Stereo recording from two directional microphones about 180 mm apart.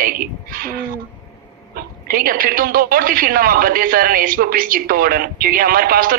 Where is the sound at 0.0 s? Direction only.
55° right (ahead or behind).